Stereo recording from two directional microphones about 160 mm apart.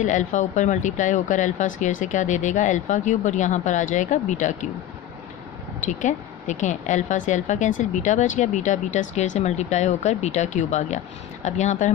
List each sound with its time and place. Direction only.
0.0 s speech: 50° left (ahead or behind)
5.9 s speech: 50° left (ahead or behind)